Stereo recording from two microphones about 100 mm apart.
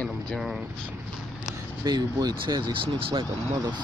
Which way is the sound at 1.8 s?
40° right (ahead or behind).